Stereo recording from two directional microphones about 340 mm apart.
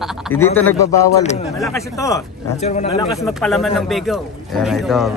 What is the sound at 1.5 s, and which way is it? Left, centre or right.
Speech, centre.